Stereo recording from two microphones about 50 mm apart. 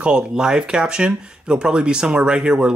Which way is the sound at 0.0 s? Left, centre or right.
Centre.